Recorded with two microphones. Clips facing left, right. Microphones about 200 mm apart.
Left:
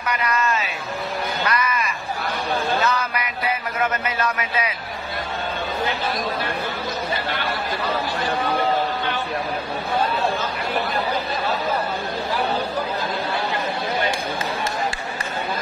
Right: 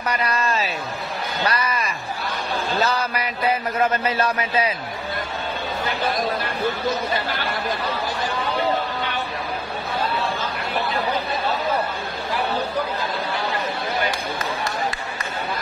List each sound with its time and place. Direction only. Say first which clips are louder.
0.0 s a man's voice: even; 35° right (ahead or behind)
1.4 s a sound: right 1 dB; 35° right (ahead or behind)
3.8 s a man's voice: right 2 dB; 30° right (ahead or behind)